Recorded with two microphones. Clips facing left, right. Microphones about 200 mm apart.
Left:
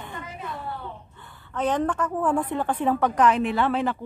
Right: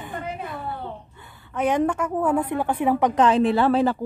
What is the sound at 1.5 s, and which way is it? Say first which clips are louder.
A woman's voice: right 3 dB; 10° right (ahead or behind).